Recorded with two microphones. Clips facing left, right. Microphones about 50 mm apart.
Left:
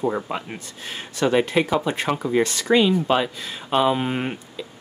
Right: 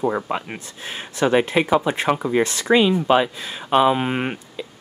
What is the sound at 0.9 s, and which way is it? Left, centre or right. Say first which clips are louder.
Speech: right 2 dB; right.